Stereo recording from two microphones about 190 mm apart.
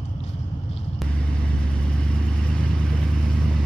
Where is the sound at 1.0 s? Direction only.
5° left (ahead or behind).